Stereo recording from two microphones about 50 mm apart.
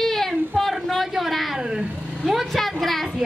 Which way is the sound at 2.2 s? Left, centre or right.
Centre.